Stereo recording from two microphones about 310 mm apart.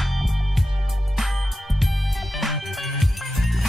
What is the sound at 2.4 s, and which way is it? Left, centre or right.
Music, centre.